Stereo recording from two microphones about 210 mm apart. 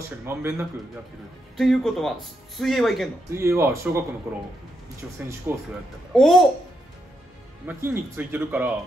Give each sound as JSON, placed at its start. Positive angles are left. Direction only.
{"t": 0.2, "sound": "speech", "side_deg": -10}
{"t": 1.6, "sound": "speech", "side_deg": 0}
{"t": 3.3, "sound": "speech", "side_deg": -10}
{"t": 5.0, "sound": "speech", "side_deg": -5}
{"t": 6.1, "sound": "speech", "side_deg": 0}
{"t": 7.6, "sound": "speech", "side_deg": -10}